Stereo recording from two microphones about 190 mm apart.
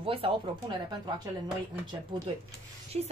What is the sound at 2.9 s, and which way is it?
Music, 35° right (ahead or behind).